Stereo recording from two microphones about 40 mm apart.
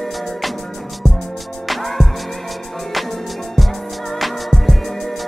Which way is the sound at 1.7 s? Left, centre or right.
Centre.